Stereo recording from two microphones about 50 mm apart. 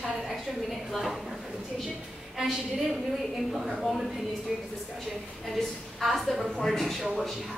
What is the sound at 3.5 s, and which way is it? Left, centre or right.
Speech, centre.